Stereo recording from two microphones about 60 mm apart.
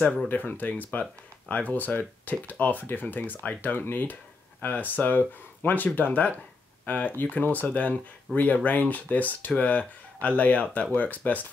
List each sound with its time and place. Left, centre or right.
0.0 s speech: left